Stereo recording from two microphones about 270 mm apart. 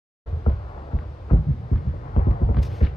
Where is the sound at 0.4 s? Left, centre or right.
Centre.